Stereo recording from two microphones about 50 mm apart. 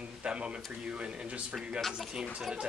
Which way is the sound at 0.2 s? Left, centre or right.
Right.